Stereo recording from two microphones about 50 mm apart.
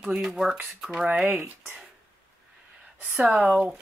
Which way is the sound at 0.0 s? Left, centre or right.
Centre.